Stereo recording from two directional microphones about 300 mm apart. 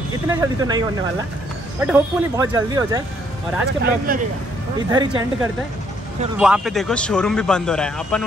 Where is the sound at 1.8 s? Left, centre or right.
Centre.